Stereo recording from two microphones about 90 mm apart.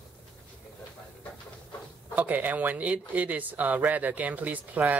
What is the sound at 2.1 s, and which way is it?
Speech, 20° right (ahead or behind).